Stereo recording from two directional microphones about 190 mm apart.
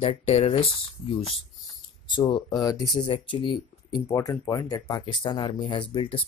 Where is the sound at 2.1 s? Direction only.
25° left (ahead or behind).